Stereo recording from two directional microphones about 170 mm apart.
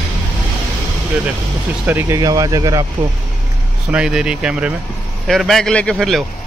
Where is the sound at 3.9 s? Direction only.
5° right (ahead or behind).